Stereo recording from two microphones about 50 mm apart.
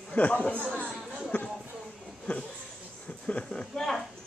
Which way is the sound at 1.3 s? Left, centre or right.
Left.